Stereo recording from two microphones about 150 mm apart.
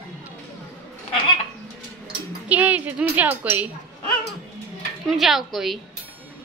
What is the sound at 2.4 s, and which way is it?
Speech, 10° right (ahead or behind).